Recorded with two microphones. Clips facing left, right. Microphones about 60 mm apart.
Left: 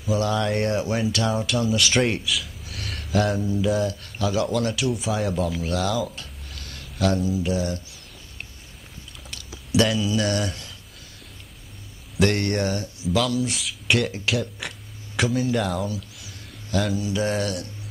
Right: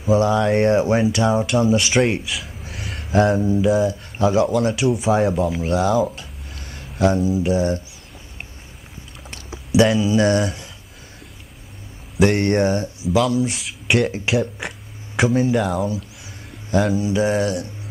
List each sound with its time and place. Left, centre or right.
0.0 s speech: right
2.0 s a man's voice: centre
2.2 s gasp: right
3.1 s speech: right
4.4 s speech: centre
4.7 s speech: right
5.3 s speech: centre
6.5 s a sound: right
7.2 s speech: centre
9.8 s speech: right
12.4 s speech: right
13.8 s speech: centre
15.5 s speech: centre
16.7 s speech: right